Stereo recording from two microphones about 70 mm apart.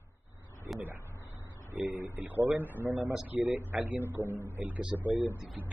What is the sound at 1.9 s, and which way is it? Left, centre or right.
Speech, right.